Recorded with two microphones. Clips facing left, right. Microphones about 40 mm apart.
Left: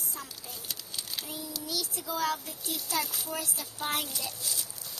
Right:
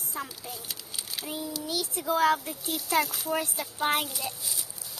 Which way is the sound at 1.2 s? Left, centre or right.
Right.